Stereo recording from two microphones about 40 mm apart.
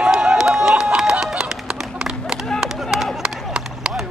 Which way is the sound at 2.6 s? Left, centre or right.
Centre.